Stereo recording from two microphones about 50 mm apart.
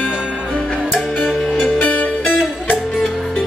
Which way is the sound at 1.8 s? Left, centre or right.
Left.